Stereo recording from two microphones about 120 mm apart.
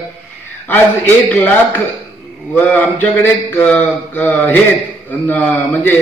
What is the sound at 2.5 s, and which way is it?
A man's voice, 10° left (ahead or behind).